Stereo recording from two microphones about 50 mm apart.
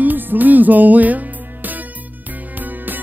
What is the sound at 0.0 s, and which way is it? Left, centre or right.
Music, right.